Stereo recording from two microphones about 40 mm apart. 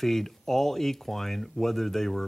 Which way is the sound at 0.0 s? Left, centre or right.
Centre.